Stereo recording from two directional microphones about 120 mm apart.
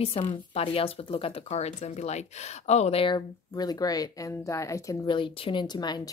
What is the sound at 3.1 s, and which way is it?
Speech, 35° left (ahead or behind).